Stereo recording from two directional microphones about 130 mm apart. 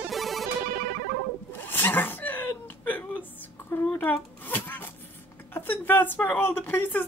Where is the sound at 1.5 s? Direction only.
15° left (ahead or behind).